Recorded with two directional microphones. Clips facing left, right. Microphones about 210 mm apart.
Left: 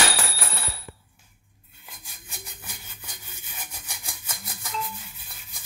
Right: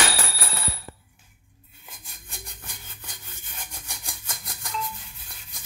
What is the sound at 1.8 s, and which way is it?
Rub, centre (ahead or behind).